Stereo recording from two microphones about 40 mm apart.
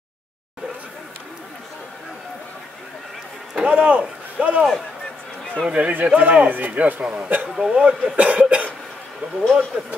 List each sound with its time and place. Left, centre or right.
3.5 s speech: right
4.4 s cough: right
5.7 s cough: right
6.5 s speech: right
7.0 s a man's voice: right
7.4 s speech: centre
8.2 s cough: right
9.4 s speech: centre